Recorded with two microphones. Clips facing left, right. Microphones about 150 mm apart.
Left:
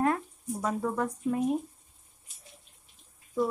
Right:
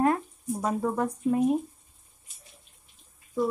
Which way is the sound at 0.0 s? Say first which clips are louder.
Right 3 dB; 20° right (ahead or behind).